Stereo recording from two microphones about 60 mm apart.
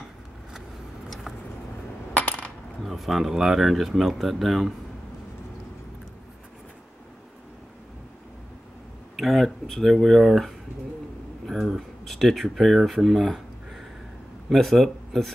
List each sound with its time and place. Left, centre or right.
2.1 s coin: left
2.8 s speech: centre
9.1 s speech: centre